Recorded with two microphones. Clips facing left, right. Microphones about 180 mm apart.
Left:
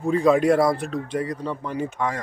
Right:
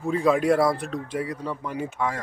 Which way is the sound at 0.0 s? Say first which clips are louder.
Left 3 dB; 5° right (ahead or behind).